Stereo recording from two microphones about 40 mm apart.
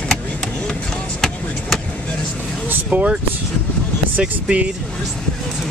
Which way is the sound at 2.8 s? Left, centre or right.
Right.